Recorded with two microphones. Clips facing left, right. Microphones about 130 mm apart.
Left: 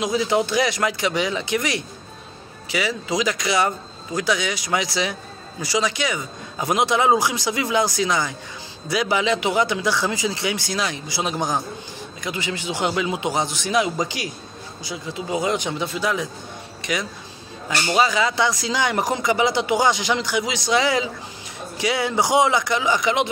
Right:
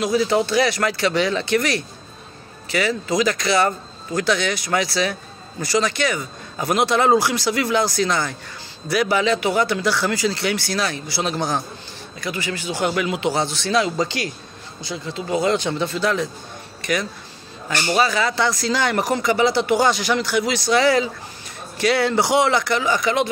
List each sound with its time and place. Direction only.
0.0 s speech: 20° left (ahead or behind)